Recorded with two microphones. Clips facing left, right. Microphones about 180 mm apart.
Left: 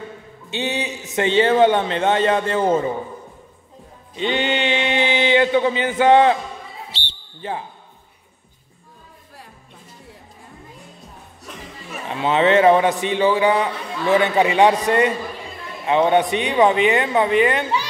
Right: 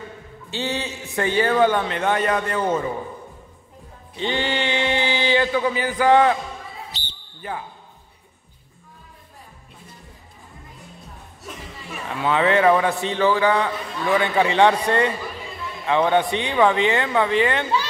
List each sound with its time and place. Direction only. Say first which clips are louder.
0.5 s a man's voice: left 2 dB; 20° left (ahead or behind)
4.2 s a sound: left 3 dB; 20° left (ahead or behind)
12.1 s a man's voice: left 3 dB; 20° left (ahead or behind)